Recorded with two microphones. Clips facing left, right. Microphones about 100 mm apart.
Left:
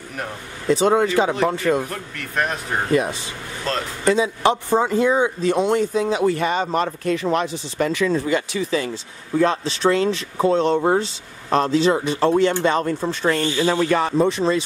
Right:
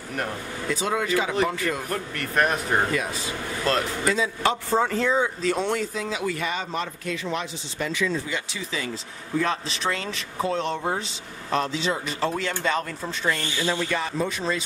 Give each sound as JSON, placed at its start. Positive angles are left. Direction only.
{"t": 0.7, "sound": "speech", "side_deg": 30}
{"t": 1.8, "sound": "speech", "side_deg": 0}
{"t": 2.9, "sound": "speech", "side_deg": 25}
{"t": 3.6, "sound": "speech", "side_deg": -5}
{"t": 4.1, "sound": "speech", "side_deg": 20}
{"t": 6.2, "sound": "speech", "side_deg": 40}
{"t": 9.4, "sound": "speech", "side_deg": 30}
{"t": 12.3, "sound": "speech", "side_deg": 25}
{"t": 14.2, "sound": "speech", "side_deg": 30}